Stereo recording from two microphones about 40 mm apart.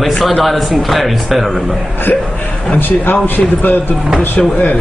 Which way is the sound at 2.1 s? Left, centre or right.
Left.